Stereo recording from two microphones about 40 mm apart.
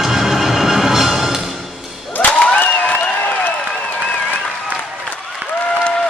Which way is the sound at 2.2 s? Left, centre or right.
Left.